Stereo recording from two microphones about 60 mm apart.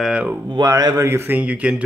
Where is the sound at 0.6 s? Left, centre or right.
Right.